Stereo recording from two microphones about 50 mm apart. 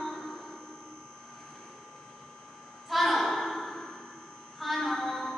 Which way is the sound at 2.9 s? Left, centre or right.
Centre.